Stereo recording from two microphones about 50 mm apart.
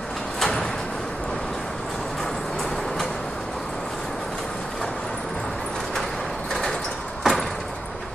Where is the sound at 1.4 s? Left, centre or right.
Centre.